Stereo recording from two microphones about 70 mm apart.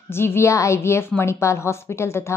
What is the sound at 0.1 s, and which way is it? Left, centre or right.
A woman's voice, left.